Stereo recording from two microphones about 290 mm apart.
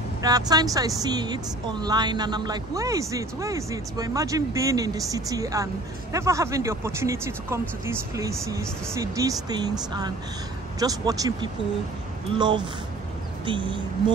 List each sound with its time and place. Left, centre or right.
0.2 s speech: centre